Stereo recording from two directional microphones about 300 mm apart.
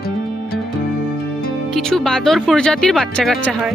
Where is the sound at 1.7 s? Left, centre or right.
Centre.